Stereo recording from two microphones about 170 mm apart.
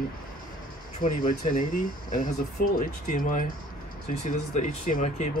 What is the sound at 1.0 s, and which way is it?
Speech, 45° left (ahead or behind).